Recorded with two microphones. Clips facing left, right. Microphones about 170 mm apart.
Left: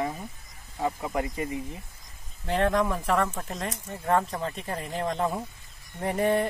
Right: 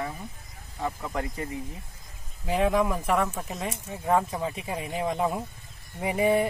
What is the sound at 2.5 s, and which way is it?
Speech, 5° right (ahead or behind).